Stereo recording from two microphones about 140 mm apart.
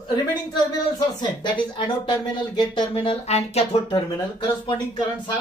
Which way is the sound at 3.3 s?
50° left (ahead or behind).